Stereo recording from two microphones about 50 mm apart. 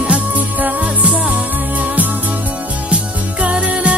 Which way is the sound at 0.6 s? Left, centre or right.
Right.